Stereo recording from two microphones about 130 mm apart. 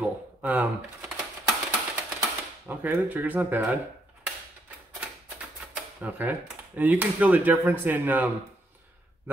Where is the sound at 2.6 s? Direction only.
15° right (ahead or behind).